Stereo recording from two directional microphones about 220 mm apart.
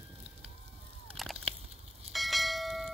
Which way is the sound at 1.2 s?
Centre (ahead or behind).